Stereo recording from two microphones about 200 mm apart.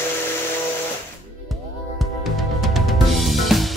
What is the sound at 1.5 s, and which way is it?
Drum kit, centre (ahead or behind).